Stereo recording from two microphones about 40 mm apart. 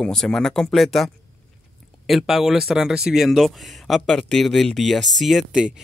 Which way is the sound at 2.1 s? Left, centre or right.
Centre.